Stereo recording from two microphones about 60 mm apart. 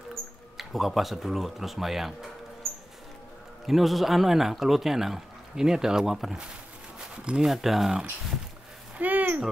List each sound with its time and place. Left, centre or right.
0.6 s speech: centre
3.6 s speech: centre
7.4 s speech: centre
8.9 s a sound: right